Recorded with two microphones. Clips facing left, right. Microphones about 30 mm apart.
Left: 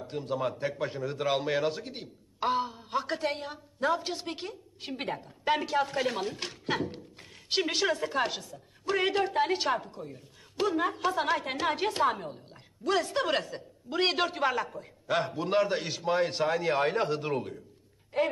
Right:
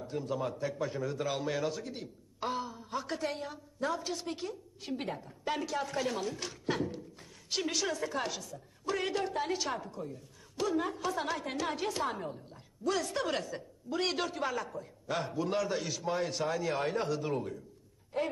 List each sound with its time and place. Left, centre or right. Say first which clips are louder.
0.0 s a woman's voice: left 3 dB; left
18.1 s a woman's voice: left 5 dB; left